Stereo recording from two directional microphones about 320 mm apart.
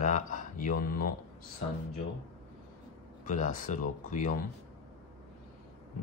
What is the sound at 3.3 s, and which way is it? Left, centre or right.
Speech, left.